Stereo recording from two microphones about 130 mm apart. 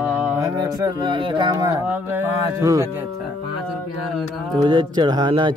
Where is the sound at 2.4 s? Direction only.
25° right (ahead or behind).